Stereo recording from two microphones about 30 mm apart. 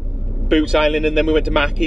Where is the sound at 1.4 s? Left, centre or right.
Centre.